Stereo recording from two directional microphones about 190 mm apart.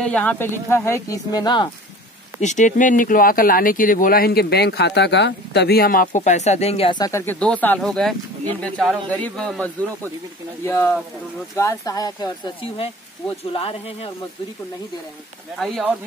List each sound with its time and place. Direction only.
0.0 s speech: 5° left (ahead or behind); by 1.7 s 25° left (ahead or behind)
2.4 s speech: 40° left (ahead or behind); by 12.5 s 20° left (ahead or behind)
12.6 s speech: 30° left (ahead or behind)
15.6 s speech: centre (ahead or behind)